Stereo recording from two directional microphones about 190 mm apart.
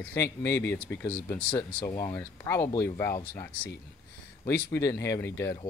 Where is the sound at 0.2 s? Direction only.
15° left (ahead or behind).